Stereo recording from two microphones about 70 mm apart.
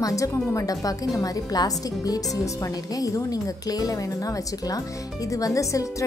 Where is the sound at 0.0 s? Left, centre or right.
Left.